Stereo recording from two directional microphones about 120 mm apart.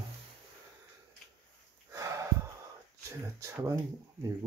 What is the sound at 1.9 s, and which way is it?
Sniff, 25° right (ahead or behind).